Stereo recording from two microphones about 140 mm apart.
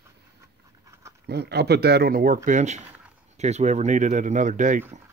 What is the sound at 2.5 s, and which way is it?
Speech, 55° right (ahead or behind).